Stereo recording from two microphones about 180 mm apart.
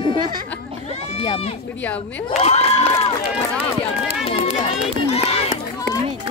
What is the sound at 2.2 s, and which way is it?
Crowd, 35° left (ahead or behind).